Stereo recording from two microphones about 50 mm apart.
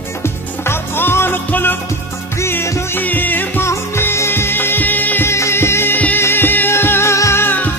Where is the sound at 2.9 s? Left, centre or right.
Left.